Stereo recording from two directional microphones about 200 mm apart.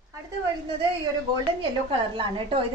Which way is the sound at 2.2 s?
25° right (ahead or behind).